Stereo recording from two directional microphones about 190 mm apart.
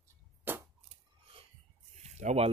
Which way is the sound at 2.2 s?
35° right (ahead or behind).